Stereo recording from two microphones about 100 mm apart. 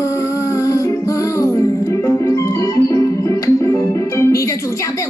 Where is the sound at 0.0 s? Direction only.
30° left (ahead or behind).